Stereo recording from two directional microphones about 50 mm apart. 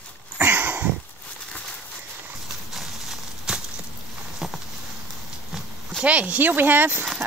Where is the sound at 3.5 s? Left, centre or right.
Centre.